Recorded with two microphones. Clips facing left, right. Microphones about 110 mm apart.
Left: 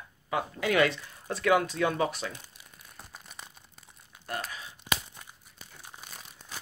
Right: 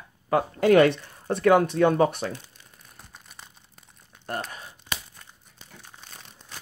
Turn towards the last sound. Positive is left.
turn(degrees=10)  # may be behind; listen again after turning